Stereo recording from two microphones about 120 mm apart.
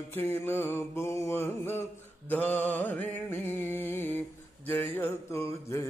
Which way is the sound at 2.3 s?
15° left (ahead or behind).